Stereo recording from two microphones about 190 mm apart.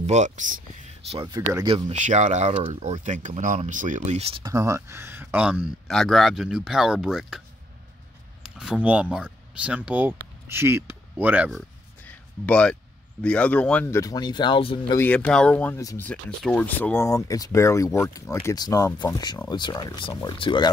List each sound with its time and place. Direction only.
0.0 s speech: 40° right (ahead or behind)
1.1 s speech: 20° right (ahead or behind)
1.9 s speech: 40° right (ahead or behind)
4.5 s speech: 15° right (ahead or behind)
12.0 s a sound: 5° left (ahead or behind)
13.2 s speech: 5° left (ahead or behind); by 15.0 s 25° left (ahead or behind)
15.0 s speech: 10° left (ahead or behind)
16.1 s speech: 5° left (ahead or behind); by 20.7 s 25° left (ahead or behind)